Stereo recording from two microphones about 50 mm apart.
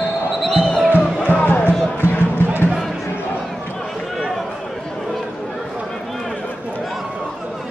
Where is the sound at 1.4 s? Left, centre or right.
Left.